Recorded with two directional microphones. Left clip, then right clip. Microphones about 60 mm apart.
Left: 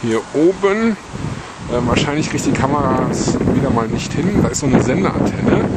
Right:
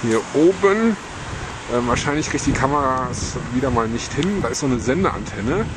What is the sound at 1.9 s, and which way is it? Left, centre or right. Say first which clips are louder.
Speech: left 3 dB; left.